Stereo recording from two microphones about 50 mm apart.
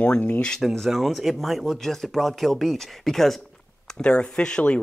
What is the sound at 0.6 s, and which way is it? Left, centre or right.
Speech, centre.